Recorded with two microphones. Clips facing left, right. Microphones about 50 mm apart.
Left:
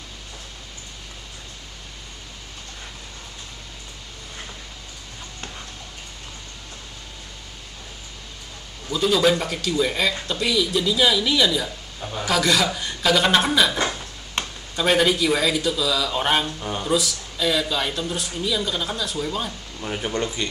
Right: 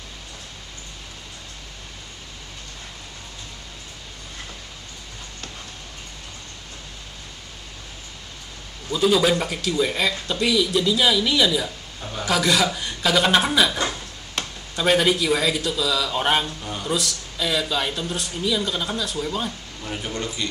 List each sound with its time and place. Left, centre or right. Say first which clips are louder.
8.9 s speech: even; centre
14.4 s a sound: left 2 dB; left
14.8 s speech: even; centre
16.4 s speech: left 3 dB; left
16.8 s speech: left 2 dB; centre
19.8 s speech: left 4 dB; left